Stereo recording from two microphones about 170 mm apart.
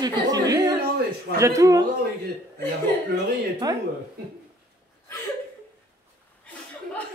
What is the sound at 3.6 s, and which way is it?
Speech, 20° right (ahead or behind).